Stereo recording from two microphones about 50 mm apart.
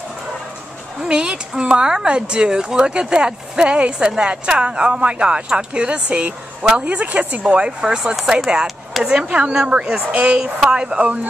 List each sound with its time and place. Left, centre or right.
1.0 s speech: centre; by 7.4 s right
7.4 s speech: right